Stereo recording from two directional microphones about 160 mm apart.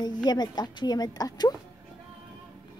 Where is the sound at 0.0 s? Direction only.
25° left (ahead or behind).